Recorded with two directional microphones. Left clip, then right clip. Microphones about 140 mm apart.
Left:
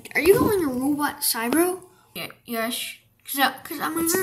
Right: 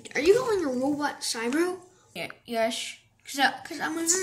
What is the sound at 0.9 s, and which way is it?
Speech, 30° left (ahead or behind).